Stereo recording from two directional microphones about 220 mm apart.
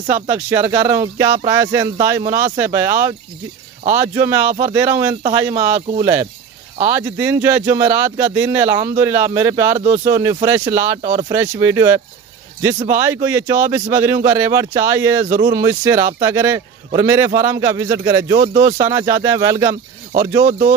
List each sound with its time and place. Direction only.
0.1 s speech: 10° right (ahead or behind)
6.9 s speech: 10° right (ahead or behind)
9.8 s speech: 35° right (ahead or behind)
10.0 s speech: 10° right (ahead or behind)
11.0 s speech: 35° right (ahead or behind)
11.2 s speech: 15° right (ahead or behind)
15.2 s speech: 35° right (ahead or behind)
15.5 s speech: 15° right (ahead or behind)
18.3 s speech: 35° right (ahead or behind)
18.6 s speech: 10° right (ahead or behind)
19.7 s speech: 35° right (ahead or behind)